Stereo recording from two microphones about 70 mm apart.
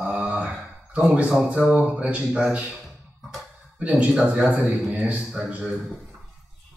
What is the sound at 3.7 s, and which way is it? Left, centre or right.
A man's voice, centre.